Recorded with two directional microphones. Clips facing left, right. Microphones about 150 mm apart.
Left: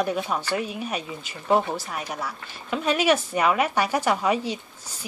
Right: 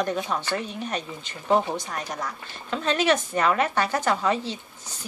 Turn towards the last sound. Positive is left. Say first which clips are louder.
# left 3 dB
turn(degrees=10)  # may be behind; listen again after turning